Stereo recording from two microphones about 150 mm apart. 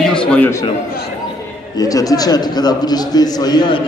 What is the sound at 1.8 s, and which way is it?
A man's voice, 25° left (ahead or behind).